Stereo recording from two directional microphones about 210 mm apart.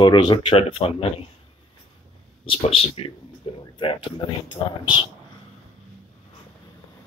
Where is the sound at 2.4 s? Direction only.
30° left (ahead or behind).